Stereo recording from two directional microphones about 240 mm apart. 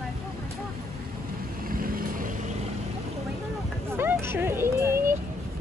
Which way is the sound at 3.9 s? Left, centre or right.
Centre.